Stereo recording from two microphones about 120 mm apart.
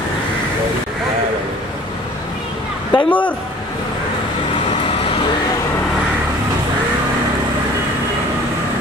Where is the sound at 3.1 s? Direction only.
15° left (ahead or behind).